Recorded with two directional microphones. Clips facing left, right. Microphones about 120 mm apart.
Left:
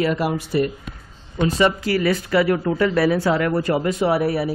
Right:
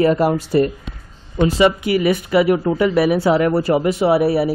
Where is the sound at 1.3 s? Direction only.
25° right (ahead or behind).